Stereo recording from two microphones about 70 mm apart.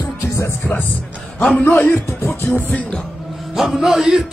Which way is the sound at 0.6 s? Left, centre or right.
Left.